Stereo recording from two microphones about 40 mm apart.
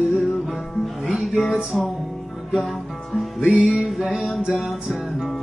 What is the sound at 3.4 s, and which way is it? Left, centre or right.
Music, centre.